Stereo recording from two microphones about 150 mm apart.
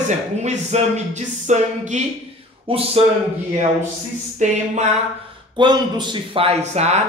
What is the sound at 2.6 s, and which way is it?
Speech, 40° right (ahead or behind).